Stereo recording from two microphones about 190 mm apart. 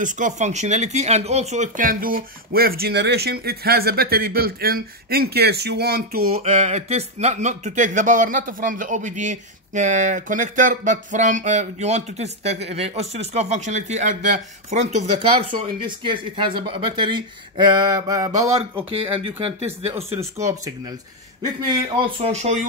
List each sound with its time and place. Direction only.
0.0 s speech: 40° right (ahead or behind)
6.4 s speech: 35° right (ahead or behind); by 18.5 s 20° right (ahead or behind)
20.2 s speech: 15° right (ahead or behind)
21.6 s speech: 30° right (ahead or behind)